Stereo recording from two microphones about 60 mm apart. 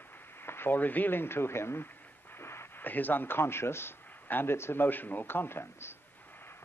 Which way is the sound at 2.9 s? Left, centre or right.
Left.